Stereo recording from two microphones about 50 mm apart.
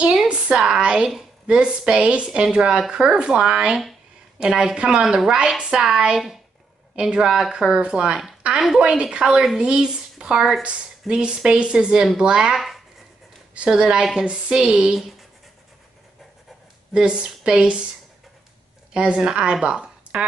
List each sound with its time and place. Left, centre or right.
0.0 s a sound: centre
0.6 s a woman's voice: centre
10.6 s a woman's voice: right
12.5 s speech: centre
13.7 s a woman's voice: centre
16.9 s a woman's voice: centre
18.9 s a woman's voice: centre